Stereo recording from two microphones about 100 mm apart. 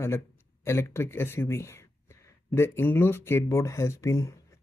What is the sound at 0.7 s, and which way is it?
Speech, 25° left (ahead or behind).